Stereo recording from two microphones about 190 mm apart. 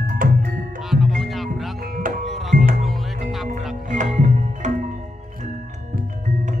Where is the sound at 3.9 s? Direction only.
40° right (ahead or behind).